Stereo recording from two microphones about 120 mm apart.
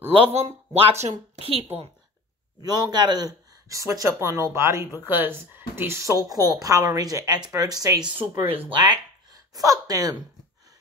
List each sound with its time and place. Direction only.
0.1 s speech: 55° right (ahead or behind)
2.6 s speech: 35° right (ahead or behind)
8.0 s speech: 15° right (ahead or behind)
8.6 s speech: 40° right (ahead or behind)